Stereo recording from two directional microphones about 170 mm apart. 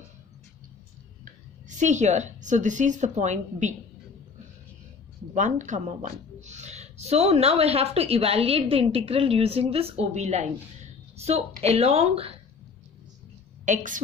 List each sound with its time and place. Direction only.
1.8 s a woman's voice: 45° right (ahead or behind)
5.3 s a woman's voice: 45° right (ahead or behind)
13.7 s a woman's voice: 50° right (ahead or behind)